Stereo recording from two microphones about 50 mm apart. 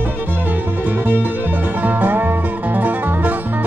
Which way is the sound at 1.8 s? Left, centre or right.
Right.